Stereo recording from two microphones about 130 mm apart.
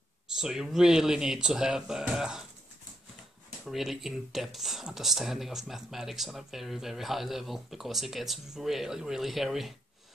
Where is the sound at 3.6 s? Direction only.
Centre (ahead or behind).